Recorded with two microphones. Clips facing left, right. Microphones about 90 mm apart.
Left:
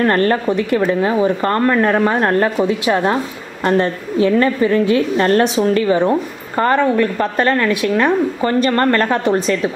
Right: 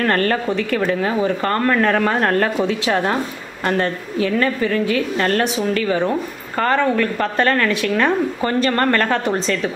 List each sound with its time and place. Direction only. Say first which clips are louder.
0.0 s a woman's voice: left 4 dB; 25° left (ahead or behind)